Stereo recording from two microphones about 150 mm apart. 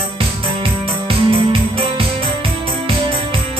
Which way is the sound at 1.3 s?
35° right (ahead or behind).